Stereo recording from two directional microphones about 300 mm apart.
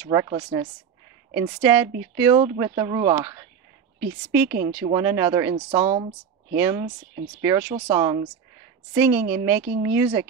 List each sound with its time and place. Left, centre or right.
0.0 s speech: centre